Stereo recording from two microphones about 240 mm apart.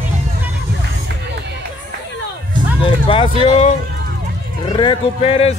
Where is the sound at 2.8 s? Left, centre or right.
Left.